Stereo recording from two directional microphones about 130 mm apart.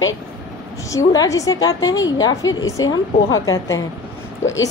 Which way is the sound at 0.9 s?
25° left (ahead or behind).